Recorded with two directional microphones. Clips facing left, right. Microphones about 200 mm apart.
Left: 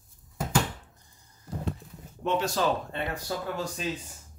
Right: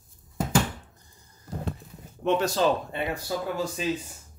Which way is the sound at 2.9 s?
10° right (ahead or behind).